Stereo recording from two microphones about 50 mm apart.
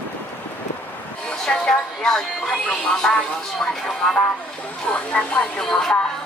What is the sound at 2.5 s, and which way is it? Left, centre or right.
Speech, left.